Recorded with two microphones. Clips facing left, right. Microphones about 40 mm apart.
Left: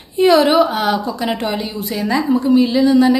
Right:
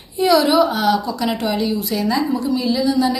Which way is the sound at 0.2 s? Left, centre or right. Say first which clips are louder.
Left 3 dB; left.